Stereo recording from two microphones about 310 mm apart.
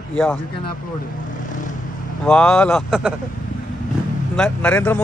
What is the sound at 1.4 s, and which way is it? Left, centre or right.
Vehicle, left.